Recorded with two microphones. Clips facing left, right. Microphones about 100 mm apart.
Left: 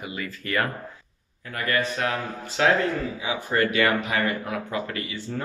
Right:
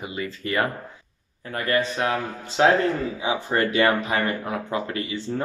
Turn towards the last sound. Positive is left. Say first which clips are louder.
# right 3 dB
turn(degrees=-25)  # may be behind; listen again after turning